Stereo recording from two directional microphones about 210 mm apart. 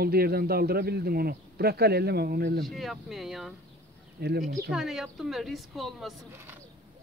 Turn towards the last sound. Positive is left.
turn(degrees=0)  # may be behind; listen again after turning